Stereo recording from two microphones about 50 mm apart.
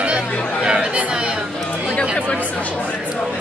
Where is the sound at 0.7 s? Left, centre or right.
Right.